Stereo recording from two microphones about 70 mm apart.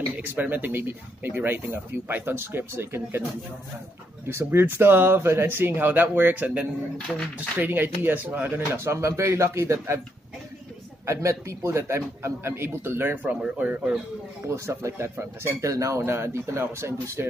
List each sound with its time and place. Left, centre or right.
0.2 s speech: right
4.3 s speech: right
7.1 s speech: centre
7.5 s speech: right
11.1 s a man's voice: right; by 13.9 s centre
14.5 s speech: right
16.1 s speech: right